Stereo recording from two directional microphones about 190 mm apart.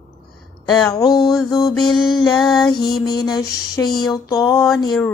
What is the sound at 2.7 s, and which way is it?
Music, 55° left (ahead or behind).